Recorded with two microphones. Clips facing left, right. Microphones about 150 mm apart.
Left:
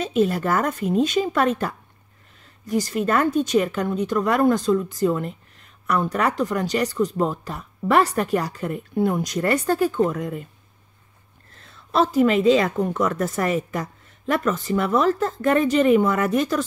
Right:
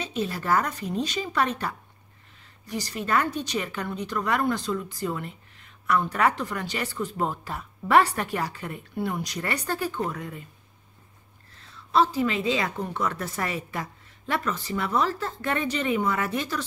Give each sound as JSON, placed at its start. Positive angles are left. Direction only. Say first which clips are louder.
{"t": 0.0, "sound": "speech", "louder": "left 9 dB", "side_deg": 50}
{"t": 11.9, "sound": "speech", "louder": "left 5 dB", "side_deg": 45}